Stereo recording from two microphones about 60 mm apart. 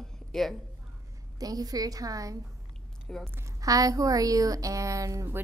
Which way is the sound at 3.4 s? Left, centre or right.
Right.